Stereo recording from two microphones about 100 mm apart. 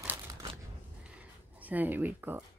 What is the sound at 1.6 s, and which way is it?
Speech, 15° right (ahead or behind).